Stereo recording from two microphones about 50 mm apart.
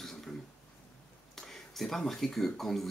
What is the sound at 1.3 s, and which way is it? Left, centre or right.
Speech, centre.